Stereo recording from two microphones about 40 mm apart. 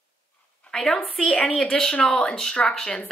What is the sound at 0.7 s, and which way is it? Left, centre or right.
A woman's voice, centre.